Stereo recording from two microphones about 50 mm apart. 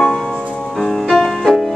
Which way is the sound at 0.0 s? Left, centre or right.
Centre.